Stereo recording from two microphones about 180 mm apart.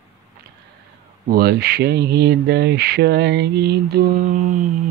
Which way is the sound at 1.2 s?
60° right (ahead or behind).